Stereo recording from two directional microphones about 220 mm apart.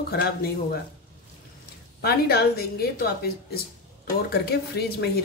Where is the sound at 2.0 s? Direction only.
45° left (ahead or behind).